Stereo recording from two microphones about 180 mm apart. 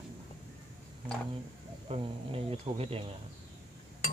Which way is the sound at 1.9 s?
30° right (ahead or behind).